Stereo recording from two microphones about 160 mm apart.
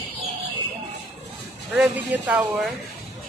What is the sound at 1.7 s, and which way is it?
Speech, 10° right (ahead or behind).